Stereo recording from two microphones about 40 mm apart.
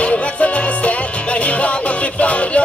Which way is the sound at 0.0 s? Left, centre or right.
Left.